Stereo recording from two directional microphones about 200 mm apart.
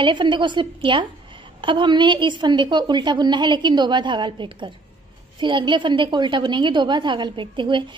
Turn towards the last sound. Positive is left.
turn(degrees=-25)  # may be behind; listen again after turning